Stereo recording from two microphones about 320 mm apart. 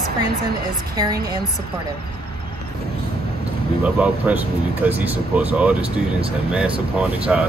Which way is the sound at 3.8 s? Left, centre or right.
Centre.